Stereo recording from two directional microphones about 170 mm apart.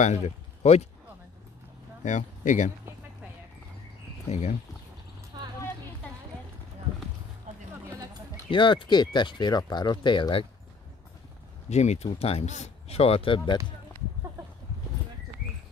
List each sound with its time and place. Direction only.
0.0 s speech: 40° left (ahead or behind)
2.0 s speech: 45° left (ahead or behind)
4.3 s speech: 40° left (ahead or behind)
5.4 s clip-clop: 25° right (ahead or behind)
7.5 s a sound: 45° right (ahead or behind)
8.5 s speech: 30° left (ahead or behind)
11.7 s speech: 40° left (ahead or behind)